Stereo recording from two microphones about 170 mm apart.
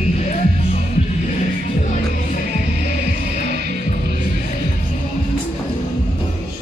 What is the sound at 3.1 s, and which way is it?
Music, 70° right (ahead or behind).